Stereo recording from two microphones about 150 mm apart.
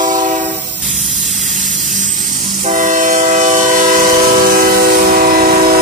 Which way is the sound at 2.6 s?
55° right (ahead or behind).